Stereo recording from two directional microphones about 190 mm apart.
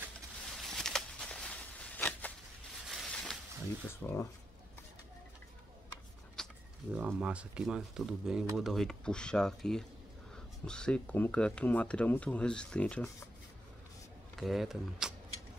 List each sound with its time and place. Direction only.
0.6 s a sound: centre (ahead or behind)
3.9 s speech: 15° left (ahead or behind)
6.3 s speech: centre (ahead or behind)
14.3 s speech: centre (ahead or behind)